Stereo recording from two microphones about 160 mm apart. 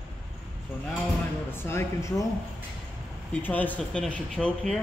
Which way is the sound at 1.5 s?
15° left (ahead or behind).